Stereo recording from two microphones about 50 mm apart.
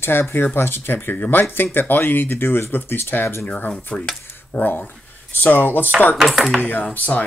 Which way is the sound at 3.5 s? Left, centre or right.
Left.